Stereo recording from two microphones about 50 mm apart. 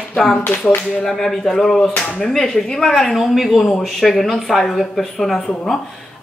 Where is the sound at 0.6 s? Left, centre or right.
Left.